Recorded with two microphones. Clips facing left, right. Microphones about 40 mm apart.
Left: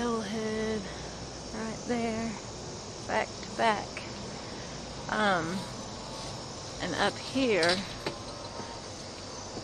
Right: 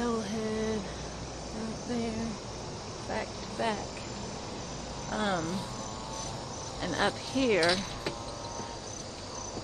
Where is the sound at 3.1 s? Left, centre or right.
Left.